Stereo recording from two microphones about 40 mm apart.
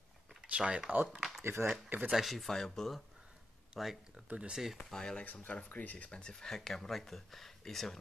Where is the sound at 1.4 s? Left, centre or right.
Right.